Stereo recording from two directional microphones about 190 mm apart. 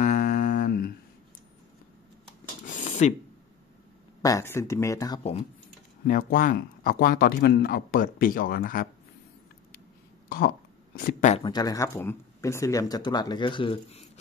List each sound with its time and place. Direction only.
0.0 s humming: 40° left (ahead or behind)
2.6 s a sound: 40° left (ahead or behind)
4.2 s speech: 15° left (ahead or behind)
6.0 s speech: 45° left (ahead or behind)
11.0 s speech: 45° left (ahead or behind)
11.3 s speech: 20° left (ahead or behind)